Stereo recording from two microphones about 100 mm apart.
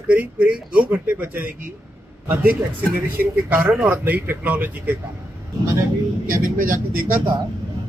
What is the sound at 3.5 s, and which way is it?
Speech, 15° right (ahead or behind).